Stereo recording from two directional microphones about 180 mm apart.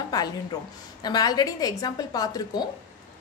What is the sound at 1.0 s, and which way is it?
A woman's voice, 20° left (ahead or behind).